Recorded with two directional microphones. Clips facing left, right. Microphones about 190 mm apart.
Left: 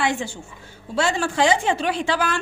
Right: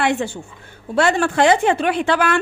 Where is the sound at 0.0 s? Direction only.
60° right (ahead or behind).